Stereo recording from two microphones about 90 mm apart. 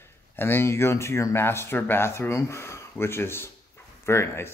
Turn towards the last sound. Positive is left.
turn(degrees=30)  # may be behind; listen again after turning